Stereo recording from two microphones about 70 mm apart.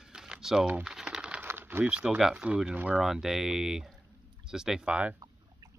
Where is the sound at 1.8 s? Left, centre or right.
Centre.